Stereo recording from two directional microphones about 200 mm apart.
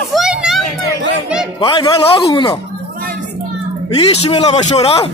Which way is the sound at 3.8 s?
30° left (ahead or behind).